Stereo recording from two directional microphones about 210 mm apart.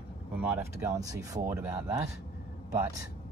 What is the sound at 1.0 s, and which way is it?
Speech, 15° right (ahead or behind).